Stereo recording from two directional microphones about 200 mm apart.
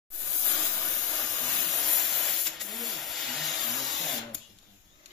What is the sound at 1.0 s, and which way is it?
Steam, 15° left (ahead or behind).